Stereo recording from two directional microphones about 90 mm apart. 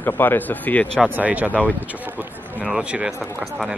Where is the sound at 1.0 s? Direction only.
15° right (ahead or behind).